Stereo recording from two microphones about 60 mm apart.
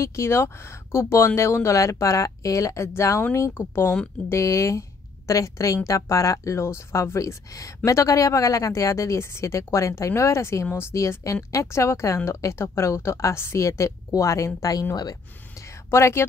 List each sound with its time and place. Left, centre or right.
0.0 s speech: left
4.3 s a woman's voice: left
7.5 s a woman's voice: left
15.9 s speech: left